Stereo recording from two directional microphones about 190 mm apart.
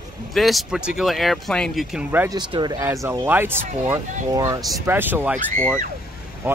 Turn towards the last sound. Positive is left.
turn(degrees=-10)  # may be behind; listen again after turning